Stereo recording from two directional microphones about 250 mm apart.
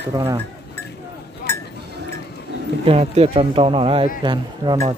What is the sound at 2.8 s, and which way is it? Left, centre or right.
Speech, right.